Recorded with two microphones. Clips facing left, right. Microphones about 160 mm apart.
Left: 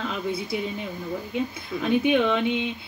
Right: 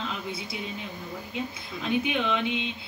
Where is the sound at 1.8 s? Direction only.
50° left (ahead or behind).